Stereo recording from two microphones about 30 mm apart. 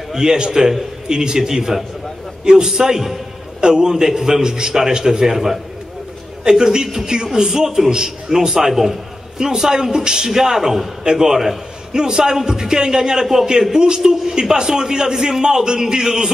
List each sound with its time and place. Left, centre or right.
0.1 s a man's voice: right
6.6 s a man's voice: right